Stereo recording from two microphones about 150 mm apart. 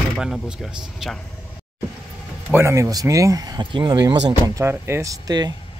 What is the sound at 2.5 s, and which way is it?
Speech, 20° right (ahead or behind).